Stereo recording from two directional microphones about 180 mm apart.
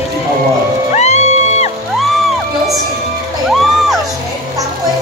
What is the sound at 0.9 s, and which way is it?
Music, 40° left (ahead or behind).